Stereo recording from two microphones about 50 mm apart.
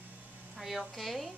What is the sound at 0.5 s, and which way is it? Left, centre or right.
Speech, centre.